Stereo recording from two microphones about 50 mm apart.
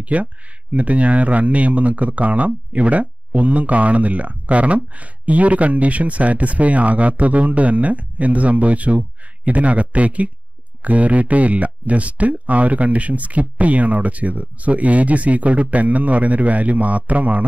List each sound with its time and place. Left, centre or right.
0.0 s speech: right